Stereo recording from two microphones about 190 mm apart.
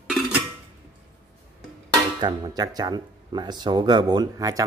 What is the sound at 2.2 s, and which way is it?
Speech, 20° right (ahead or behind).